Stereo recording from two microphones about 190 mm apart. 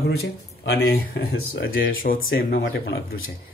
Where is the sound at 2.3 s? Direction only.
55° left (ahead or behind).